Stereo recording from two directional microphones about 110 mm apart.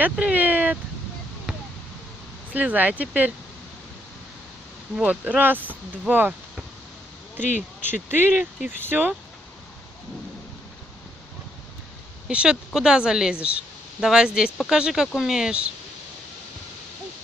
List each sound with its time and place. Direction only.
0.0 s speech: 15° right (ahead or behind)
2.5 s speech: 15° right (ahead or behind)
4.9 s speech: 10° right (ahead or behind)
7.8 s speech: 20° right (ahead or behind)
12.3 s speech: 10° right (ahead or behind)